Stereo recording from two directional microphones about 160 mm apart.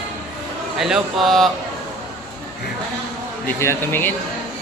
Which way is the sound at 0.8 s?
Centre (ahead or behind).